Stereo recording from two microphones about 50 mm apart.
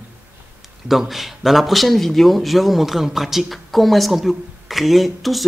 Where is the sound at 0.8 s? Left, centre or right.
Centre.